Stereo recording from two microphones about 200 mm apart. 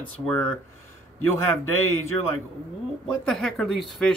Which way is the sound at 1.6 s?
90° right.